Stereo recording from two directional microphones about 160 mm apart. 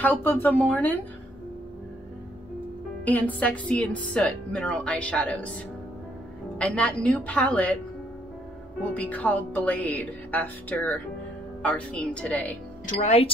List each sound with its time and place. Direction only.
0.0 s a woman's voice: 10° left (ahead or behind)
3.1 s a woman's voice: 10° left (ahead or behind)
6.6 s a woman's voice: 10° left (ahead or behind)
8.9 s a woman's voice: 10° left (ahead or behind)
12.8 s speech: 45° left (ahead or behind)